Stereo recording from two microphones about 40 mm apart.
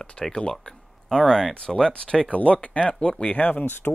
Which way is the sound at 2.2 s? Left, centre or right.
Left.